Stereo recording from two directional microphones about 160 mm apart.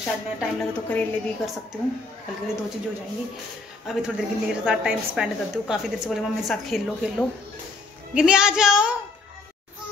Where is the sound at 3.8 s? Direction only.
Centre (ahead or behind).